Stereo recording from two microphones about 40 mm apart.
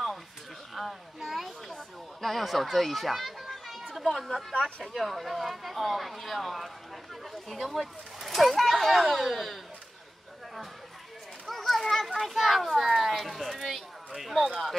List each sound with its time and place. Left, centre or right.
0.7 s children playing: centre
2.2 s a child's voice: centre
4.6 s speech: left
4.9 s speech: centre
7.7 s speech: centre
11.4 s children playing: centre
12.4 s a child's voice: centre